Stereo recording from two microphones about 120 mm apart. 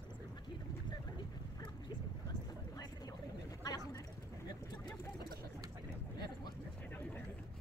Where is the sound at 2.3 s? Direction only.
30° left (ahead or behind).